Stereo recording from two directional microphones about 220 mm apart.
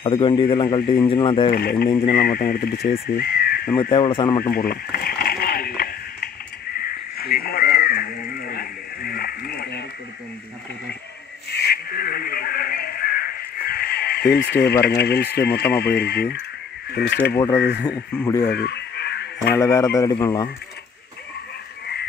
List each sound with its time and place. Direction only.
0.0 s a man's voice: 20° left (ahead or behind)
1.5 s speech: 45° left (ahead or behind)
1.9 s a man's voice: 25° left (ahead or behind)
2.1 s speech: 40° left (ahead or behind)
3.9 s a man's voice: 20° left (ahead or behind)
4.4 s a sound: 40° left (ahead or behind)
11.5 s a sound: 45° left (ahead or behind)
18.2 s speech: 15° left (ahead or behind)
18.5 s fowl: 50° left (ahead or behind)
19.5 s speech: 15° left (ahead or behind)